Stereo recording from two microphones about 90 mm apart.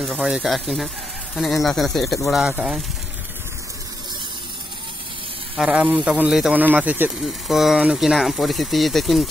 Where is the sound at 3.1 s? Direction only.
25° right (ahead or behind).